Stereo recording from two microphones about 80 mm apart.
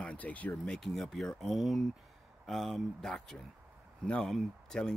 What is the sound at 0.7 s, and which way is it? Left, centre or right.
Speech, centre.